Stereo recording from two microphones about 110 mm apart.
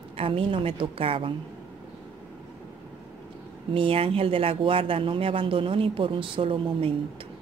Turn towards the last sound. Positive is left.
turn(degrees=-55)  # may be behind; listen again after turning